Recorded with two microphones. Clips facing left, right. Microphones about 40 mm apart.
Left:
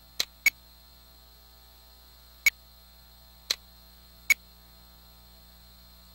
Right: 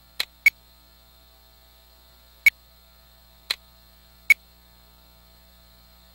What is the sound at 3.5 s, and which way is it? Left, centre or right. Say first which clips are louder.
Tick-tock: right 3 dB; right.